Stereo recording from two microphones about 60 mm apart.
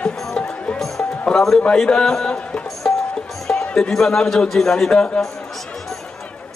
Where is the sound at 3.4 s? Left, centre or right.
Centre.